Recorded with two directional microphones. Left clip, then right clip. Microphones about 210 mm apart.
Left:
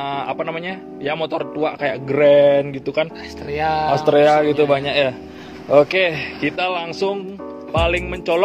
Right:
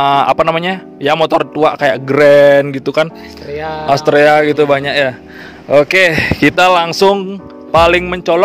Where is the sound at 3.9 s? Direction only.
50° right (ahead or behind).